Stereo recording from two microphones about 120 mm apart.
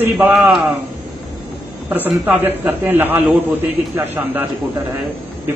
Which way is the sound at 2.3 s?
10° right (ahead or behind).